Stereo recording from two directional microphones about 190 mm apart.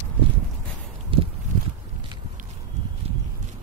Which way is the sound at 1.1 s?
25° right (ahead or behind).